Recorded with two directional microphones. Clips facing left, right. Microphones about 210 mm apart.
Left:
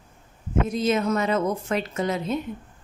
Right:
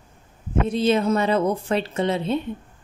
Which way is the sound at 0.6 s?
30° right (ahead or behind).